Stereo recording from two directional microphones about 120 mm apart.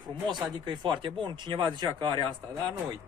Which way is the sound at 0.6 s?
45° right (ahead or behind).